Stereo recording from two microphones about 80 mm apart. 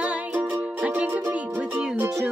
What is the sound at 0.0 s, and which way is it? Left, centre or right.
Music, centre.